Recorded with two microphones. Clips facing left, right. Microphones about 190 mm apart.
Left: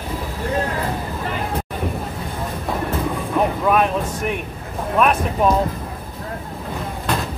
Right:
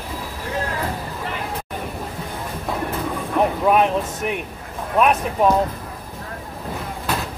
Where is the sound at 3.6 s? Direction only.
20° right (ahead or behind).